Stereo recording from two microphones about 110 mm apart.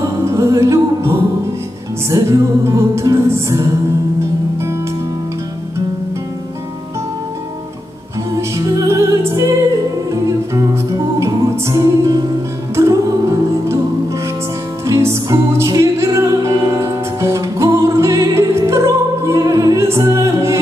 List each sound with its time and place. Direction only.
0.0 s music: 30° right (ahead or behind)
8.4 s music: 30° right (ahead or behind)
14.9 s music: 30° right (ahead or behind)